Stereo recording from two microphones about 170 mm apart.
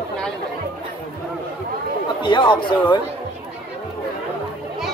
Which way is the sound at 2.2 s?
30° left (ahead or behind).